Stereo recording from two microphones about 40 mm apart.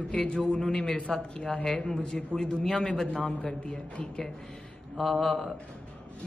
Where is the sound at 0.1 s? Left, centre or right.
Left.